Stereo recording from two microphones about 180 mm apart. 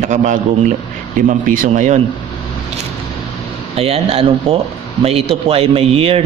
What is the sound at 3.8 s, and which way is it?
Speech, 35° right (ahead or behind).